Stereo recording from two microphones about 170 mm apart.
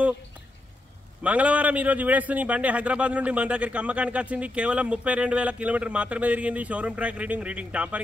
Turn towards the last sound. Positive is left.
turn(degrees=-10)  # may be behind; listen again after turning